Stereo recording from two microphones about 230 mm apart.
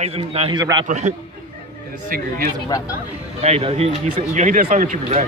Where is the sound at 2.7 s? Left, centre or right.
Centre.